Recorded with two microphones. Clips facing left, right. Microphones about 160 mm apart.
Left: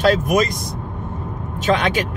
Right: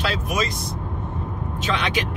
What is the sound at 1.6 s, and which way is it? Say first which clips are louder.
Speech: left 7 dB; 45° left (ahead or behind).